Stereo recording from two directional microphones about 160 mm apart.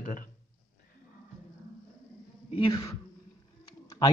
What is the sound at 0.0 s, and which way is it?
Speech, 55° left (ahead or behind).